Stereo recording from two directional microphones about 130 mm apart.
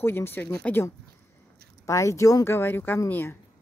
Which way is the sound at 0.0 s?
15° left (ahead or behind).